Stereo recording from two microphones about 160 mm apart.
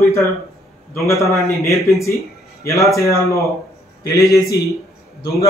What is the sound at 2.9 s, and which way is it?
A man's voice, 20° left (ahead or behind).